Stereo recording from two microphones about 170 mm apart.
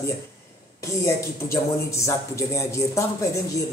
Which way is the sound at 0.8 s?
15° left (ahead or behind).